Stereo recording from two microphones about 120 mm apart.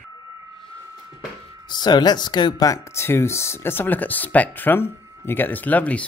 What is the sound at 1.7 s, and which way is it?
Speech, 35° left (ahead or behind).